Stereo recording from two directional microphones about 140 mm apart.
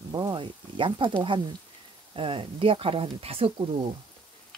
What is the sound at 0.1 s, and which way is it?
Speech, 35° right (ahead or behind).